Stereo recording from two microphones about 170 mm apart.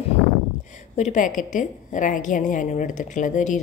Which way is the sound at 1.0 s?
45° left (ahead or behind).